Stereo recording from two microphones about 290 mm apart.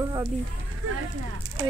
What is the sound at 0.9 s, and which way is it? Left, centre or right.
Speech, right.